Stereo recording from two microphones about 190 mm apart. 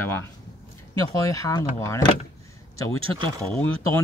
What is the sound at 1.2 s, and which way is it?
Speech, 20° left (ahead or behind).